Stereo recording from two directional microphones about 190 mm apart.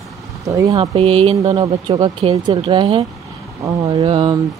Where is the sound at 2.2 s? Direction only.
35° right (ahead or behind).